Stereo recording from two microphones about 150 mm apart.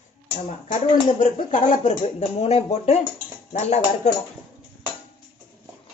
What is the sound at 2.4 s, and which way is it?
Speech, 45° left (ahead or behind).